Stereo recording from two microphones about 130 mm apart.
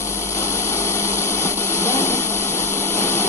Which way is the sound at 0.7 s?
20° left (ahead or behind).